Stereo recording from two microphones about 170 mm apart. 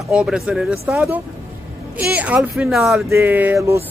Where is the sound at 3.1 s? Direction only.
15° right (ahead or behind).